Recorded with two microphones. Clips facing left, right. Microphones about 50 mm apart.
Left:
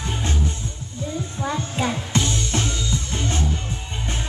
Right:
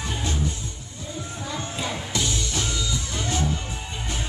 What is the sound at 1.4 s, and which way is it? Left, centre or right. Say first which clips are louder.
Music: left 6 dB; left.